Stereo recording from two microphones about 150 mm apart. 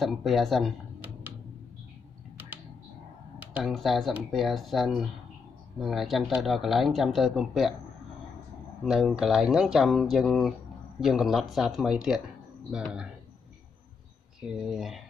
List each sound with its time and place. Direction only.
0.0 s speech: centre (ahead or behind)
3.5 s speech: centre (ahead or behind)
8.8 s speech: centre (ahead or behind)
14.5 s speech: 5° right (ahead or behind)